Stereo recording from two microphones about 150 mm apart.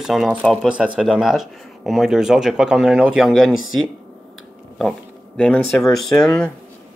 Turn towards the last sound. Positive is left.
turn(degrees=5)  # may be behind; listen again after turning